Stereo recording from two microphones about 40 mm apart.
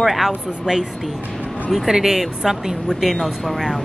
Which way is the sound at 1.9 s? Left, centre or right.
Centre.